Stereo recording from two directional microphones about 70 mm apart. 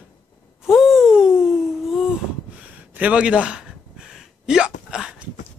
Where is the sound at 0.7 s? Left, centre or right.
Centre.